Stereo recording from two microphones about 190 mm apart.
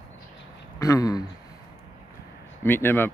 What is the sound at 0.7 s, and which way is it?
Speech, 15° left (ahead or behind).